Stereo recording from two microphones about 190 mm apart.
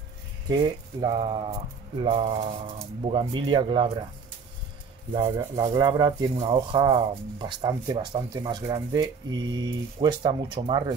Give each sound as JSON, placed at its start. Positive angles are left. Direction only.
{"t": 1.0, "sound": "speech", "side_deg": -25}
{"t": 5.1, "sound": "speech", "side_deg": -25}